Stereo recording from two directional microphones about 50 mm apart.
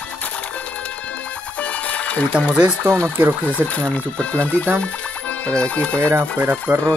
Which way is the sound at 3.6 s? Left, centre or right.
Left.